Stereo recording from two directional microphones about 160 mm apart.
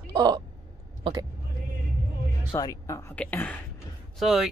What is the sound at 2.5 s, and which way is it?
Speech, 20° left (ahead or behind).